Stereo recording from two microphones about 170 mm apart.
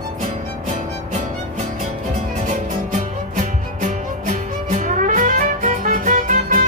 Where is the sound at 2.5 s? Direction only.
45° right (ahead or behind).